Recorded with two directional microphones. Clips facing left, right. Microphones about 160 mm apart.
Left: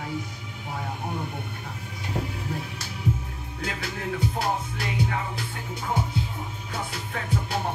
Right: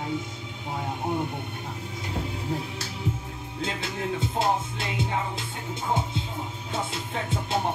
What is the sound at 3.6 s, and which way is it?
Music, 25° right (ahead or behind).